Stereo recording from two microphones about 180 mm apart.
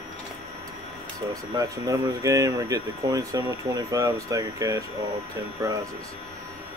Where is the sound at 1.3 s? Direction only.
20° right (ahead or behind).